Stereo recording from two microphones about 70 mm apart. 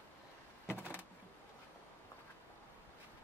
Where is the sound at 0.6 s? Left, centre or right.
Left.